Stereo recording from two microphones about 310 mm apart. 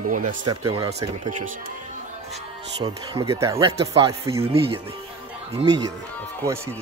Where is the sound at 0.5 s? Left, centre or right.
Centre.